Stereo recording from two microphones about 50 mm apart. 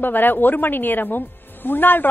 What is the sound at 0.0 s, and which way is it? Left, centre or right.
A woman's voice, left.